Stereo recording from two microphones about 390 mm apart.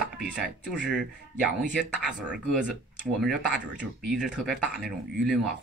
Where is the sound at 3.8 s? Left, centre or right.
Centre.